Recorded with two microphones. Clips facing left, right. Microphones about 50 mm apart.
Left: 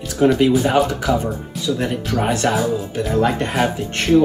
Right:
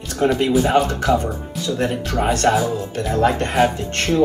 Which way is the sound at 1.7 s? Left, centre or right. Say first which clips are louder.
Right 1 dB; centre.